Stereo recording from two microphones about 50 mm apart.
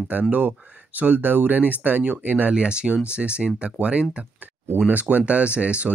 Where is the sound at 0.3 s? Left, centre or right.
Right.